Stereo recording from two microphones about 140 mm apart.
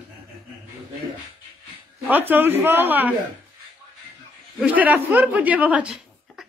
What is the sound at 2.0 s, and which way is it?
Speech, 15° right (ahead or behind).